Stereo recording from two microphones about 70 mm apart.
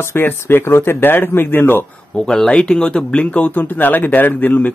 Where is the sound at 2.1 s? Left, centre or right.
Centre.